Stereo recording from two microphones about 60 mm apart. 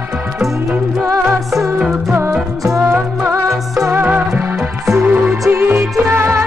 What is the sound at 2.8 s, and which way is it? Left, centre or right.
Music, right.